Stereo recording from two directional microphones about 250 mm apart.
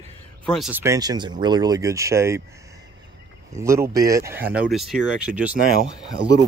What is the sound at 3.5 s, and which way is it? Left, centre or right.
Speech, centre.